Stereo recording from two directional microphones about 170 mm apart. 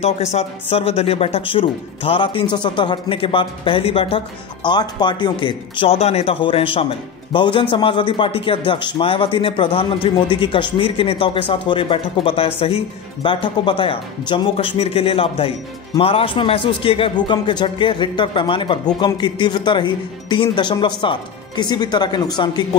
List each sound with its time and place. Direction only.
0.0 s a man's voice: 40° left (ahead or behind); by 22.7 s 25° left (ahead or behind)